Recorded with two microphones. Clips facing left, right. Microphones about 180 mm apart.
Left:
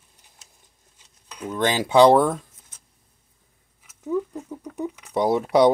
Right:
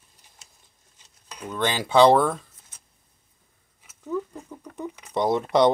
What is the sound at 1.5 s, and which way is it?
Speech, 15° left (ahead or behind).